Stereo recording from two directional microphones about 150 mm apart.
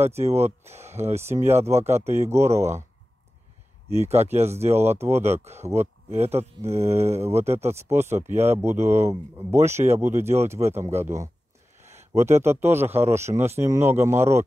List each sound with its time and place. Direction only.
0.2 s speech: 45° right (ahead or behind)
1.2 s speech: 15° right (ahead or behind)
1.7 s speech: 45° right (ahead or behind)
2.0 s speech: 15° right (ahead or behind)
4.0 s speech: 45° right (ahead or behind)
4.3 s speech: 15° right (ahead or behind)
5.4 s speech: 45° right (ahead or behind)
5.7 s speech: 15° right (ahead or behind)
6.2 s speech: 45° right (ahead or behind)
7.6 s speech: 15° right (ahead or behind)
11.8 s a sound: 50° right (ahead or behind)
12.1 s speech: 20° right (ahead or behind)